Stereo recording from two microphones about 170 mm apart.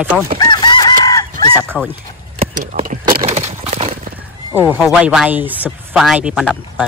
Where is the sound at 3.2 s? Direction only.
40° right (ahead or behind).